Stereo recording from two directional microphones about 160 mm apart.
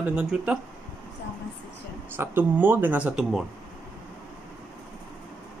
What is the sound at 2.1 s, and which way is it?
Speech, 15° right (ahead or behind).